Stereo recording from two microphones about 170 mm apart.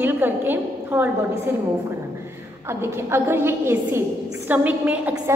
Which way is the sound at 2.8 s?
15° right (ahead or behind).